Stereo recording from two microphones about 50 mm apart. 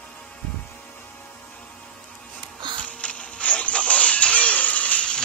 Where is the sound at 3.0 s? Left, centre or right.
Left.